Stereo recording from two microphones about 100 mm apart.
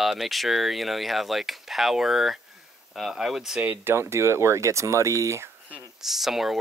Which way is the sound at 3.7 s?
25° right (ahead or behind).